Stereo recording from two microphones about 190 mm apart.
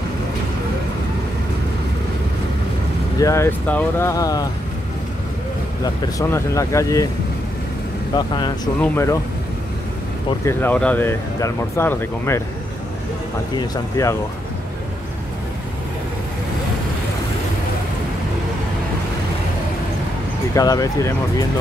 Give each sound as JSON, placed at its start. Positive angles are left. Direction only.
{"t": 3.2, "sound": "speech", "side_deg": 15}
{"t": 6.1, "sound": "speech", "side_deg": 15}
{"t": 8.1, "sound": "speech", "side_deg": 20}
{"t": 10.4, "sound": "speech", "side_deg": 10}
{"t": 13.6, "sound": "speech", "side_deg": 15}
{"t": 20.5, "sound": "speech", "side_deg": 20}